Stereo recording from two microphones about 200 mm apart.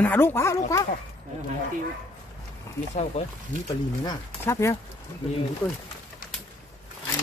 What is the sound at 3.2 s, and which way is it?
Speech, 30° left (ahead or behind).